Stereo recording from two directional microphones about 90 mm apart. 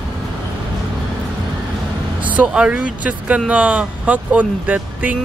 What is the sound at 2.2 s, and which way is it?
Speech, 15° right (ahead or behind).